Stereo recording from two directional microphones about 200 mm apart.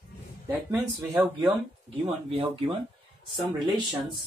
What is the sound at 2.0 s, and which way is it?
Speech, 30° right (ahead or behind).